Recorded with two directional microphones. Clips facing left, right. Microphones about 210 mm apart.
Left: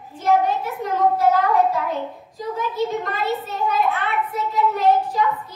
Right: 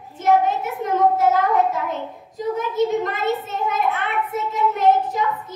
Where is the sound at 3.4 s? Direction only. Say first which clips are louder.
Left 1 dB; 20° right (ahead or behind).